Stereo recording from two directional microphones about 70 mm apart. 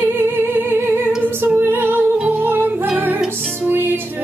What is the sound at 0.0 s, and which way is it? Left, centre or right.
Music, right.